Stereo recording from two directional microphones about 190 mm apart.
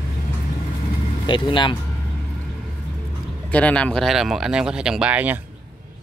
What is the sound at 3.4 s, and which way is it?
Speech, 5° left (ahead or behind).